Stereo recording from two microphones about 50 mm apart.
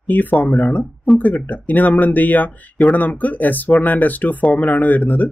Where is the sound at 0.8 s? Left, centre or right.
Centre.